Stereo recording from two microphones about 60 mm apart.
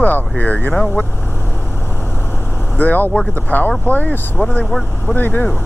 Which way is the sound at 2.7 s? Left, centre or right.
Left.